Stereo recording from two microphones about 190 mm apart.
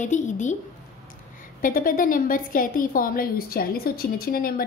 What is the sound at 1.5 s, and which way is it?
A woman's voice, 45° left (ahead or behind).